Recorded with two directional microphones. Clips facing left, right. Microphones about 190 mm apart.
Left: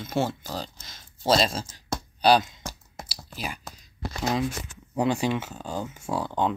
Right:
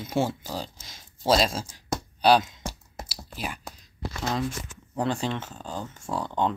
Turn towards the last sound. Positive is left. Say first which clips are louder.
# left 1 dB
turn(degrees=5)  # may be behind; listen again after turning